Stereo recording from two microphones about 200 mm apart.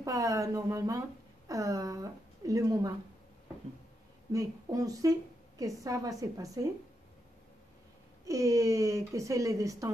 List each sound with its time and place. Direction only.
0.0 s speech: 15° right (ahead or behind)
4.3 s speech: 15° right (ahead or behind)
8.3 s speech: 15° right (ahead or behind)